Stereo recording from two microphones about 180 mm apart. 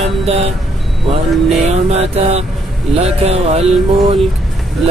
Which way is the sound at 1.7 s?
35° right (ahead or behind).